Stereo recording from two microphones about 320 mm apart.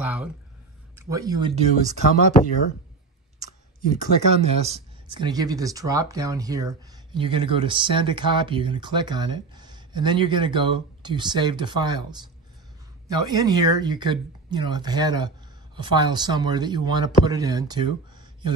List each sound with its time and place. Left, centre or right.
0.0 s a sound: centre
0.9 s speech: centre
4.4 s speech: centre